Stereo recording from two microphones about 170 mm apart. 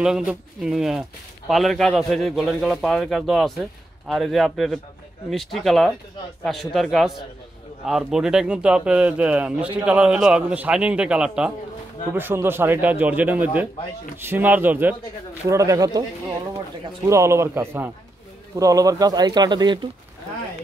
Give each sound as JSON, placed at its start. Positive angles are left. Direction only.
{"t": 0.0, "sound": "a man's voice", "side_deg": -5}
{"t": 17.0, "sound": "a man's voice", "side_deg": -15}